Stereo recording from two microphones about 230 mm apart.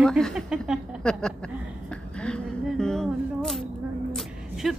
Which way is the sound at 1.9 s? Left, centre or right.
Centre.